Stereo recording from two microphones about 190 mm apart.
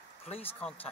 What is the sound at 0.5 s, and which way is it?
Speech, 10° left (ahead or behind).